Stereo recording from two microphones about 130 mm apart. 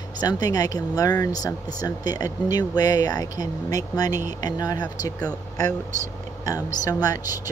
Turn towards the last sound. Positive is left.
turn(degrees=30)  # may be behind; listen again after turning